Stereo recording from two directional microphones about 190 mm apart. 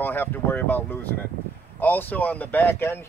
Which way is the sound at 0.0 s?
10° left (ahead or behind).